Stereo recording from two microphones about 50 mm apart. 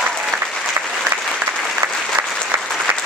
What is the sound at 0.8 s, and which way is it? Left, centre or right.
Applause, right.